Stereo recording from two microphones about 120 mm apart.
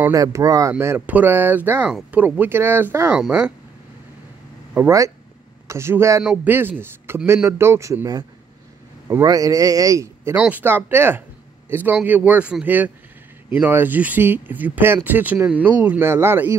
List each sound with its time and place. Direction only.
0.1 s speech: 30° right (ahead or behind)
4.7 s speech: 25° right (ahead or behind)
10.3 s speech: 15° right (ahead or behind)